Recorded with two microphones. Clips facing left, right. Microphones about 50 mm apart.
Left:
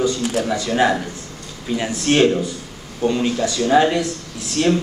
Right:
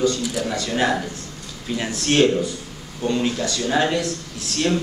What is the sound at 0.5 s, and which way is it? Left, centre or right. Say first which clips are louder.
A man's voice: left 3 dB; centre.